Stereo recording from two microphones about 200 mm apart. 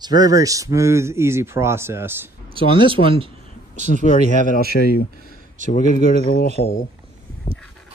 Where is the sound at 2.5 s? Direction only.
25° right (ahead or behind).